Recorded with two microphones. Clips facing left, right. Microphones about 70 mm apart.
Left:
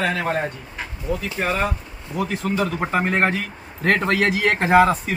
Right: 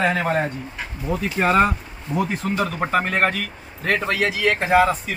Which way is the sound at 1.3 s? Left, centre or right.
Right.